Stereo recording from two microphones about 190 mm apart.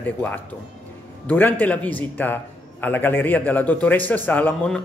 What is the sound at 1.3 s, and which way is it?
A man's voice, 10° left (ahead or behind).